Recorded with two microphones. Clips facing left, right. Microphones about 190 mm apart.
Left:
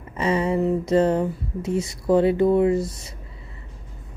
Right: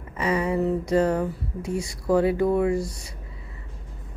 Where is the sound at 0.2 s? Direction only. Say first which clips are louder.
Left 2 dB; 25° left (ahead or behind).